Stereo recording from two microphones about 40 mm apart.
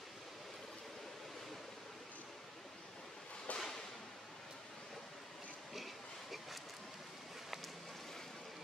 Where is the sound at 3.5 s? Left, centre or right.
Left.